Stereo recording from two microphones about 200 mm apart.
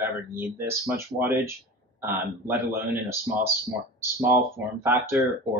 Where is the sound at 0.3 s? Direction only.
10° right (ahead or behind).